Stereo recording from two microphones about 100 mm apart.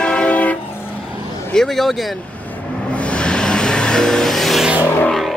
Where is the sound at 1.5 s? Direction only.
5° left (ahead or behind).